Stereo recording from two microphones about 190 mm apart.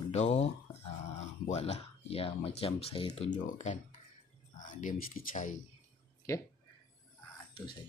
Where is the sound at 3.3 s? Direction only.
40° left (ahead or behind).